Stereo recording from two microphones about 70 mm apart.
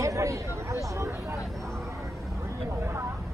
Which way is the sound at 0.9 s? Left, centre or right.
Right.